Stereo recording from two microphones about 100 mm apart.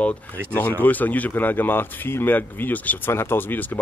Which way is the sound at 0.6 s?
20° left (ahead or behind).